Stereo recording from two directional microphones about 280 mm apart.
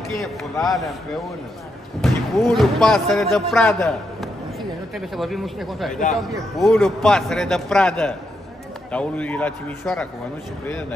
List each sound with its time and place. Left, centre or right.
0.2 s a man's voice: centre
2.0 s a man's voice: centre